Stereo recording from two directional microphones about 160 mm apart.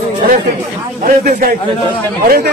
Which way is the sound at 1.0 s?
60° right (ahead or behind).